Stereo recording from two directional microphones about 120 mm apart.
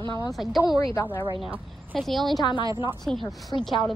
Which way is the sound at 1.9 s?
Centre (ahead or behind).